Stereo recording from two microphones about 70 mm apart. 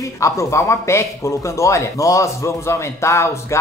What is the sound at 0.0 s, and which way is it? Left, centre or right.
Speech, left.